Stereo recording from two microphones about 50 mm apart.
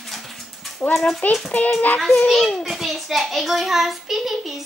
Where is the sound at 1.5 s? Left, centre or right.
Left.